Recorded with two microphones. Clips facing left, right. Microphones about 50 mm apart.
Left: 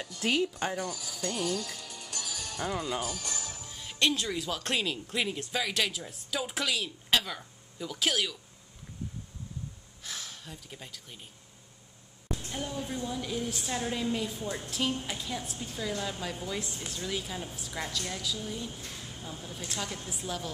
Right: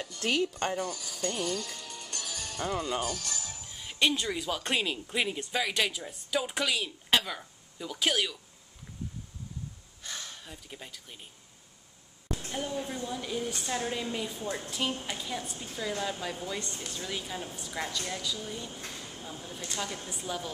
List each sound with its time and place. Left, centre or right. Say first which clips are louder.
0.0 s speech: even; centre
3.3 s music: left 1 dB; left
3.6 s speech: right 1 dB; centre
10.0 s speech: even; centre
12.4 s speech: right 2 dB; centre
18.9 s a sound: right 1 dB; centre
19.2 s speech: left 1 dB; centre